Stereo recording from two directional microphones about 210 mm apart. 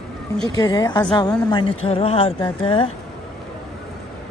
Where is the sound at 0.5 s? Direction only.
20° left (ahead or behind).